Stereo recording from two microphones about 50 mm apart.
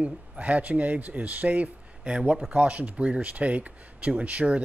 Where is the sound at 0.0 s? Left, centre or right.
Right.